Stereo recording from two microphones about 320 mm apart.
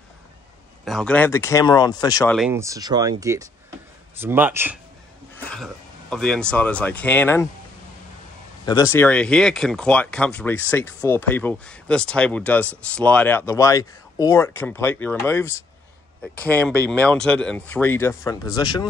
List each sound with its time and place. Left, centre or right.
0.8 s speech: centre
2.3 s speech: centre
8.6 s speech: centre